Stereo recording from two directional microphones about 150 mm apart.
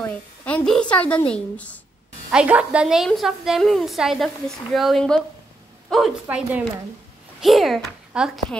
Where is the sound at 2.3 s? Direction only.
5° right (ahead or behind).